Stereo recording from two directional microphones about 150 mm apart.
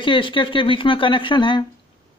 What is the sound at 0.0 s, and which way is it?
Speech, 35° left (ahead or behind).